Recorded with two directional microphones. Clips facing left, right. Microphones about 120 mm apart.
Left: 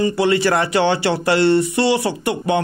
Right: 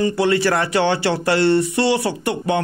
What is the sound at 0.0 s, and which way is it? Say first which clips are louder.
Speech: left 1 dB; 15° left (ahead or behind).